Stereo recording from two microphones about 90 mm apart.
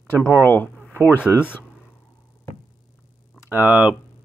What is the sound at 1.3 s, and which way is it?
Speech, 25° right (ahead or behind).